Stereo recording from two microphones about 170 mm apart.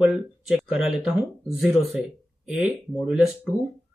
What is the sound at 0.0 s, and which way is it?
Speech, 5° right (ahead or behind).